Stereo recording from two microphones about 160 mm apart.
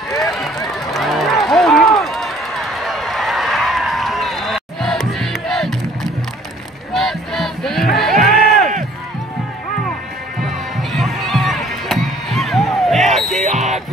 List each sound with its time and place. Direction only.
0.8 s run: centre (ahead or behind)
6.9 s battle cry: centre (ahead or behind)
7.9 s music: centre (ahead or behind)
10.8 s music: centre (ahead or behind)
13.4 s music: 45° right (ahead or behind)